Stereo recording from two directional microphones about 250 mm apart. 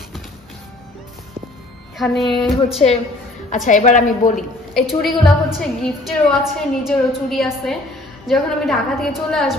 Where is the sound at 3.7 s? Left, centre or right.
Left.